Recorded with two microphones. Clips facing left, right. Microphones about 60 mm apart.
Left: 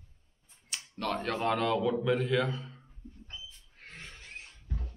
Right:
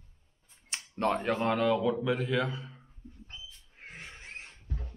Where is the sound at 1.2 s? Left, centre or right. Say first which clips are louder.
Right 2 dB; centre.